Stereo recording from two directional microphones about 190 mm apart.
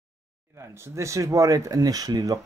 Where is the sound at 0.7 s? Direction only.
15° right (ahead or behind).